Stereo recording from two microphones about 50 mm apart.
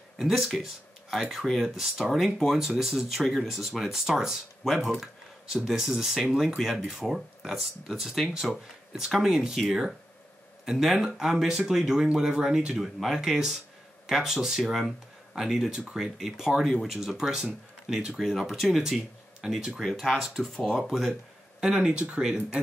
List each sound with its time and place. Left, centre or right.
0.2 s speech: centre
10.6 s speech: centre
19.4 s speech: centre
20.8 s speech: centre
21.5 s speech: centre